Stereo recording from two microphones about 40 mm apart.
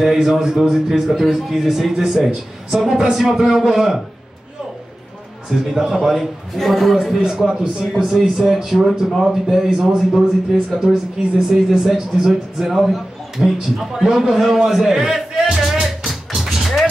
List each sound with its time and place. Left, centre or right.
0.0 s speech: centre
0.3 s speech: centre
5.7 s speech: centre
14.0 s speech: centre
14.3 s speech: centre
16.1 s music: centre